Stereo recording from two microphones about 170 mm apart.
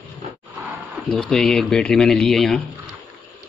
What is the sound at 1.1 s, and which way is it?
Speech, 5° left (ahead or behind).